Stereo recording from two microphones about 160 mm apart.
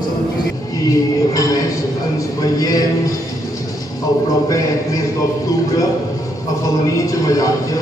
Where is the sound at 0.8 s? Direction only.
20° left (ahead or behind).